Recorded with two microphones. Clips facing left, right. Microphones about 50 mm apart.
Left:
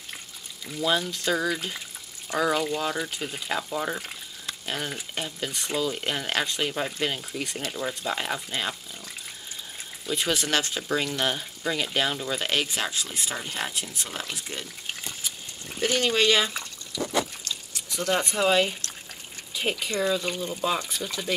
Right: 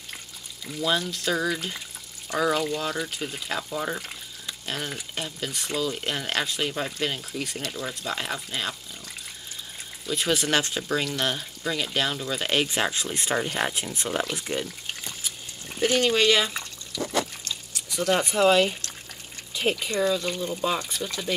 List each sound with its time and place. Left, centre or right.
0.7 s speech: centre
10.0 s speech: centre
15.8 s speech: centre
17.8 s speech: centre
20.4 s speech: centre